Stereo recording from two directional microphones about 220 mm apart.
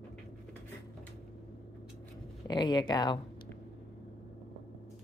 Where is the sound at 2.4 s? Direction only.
20° left (ahead or behind).